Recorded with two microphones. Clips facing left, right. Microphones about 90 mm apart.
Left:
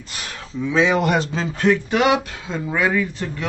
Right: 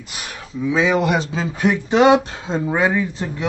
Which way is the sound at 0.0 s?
10° right (ahead or behind).